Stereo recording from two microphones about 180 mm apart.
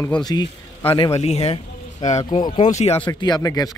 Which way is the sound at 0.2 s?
20° left (ahead or behind).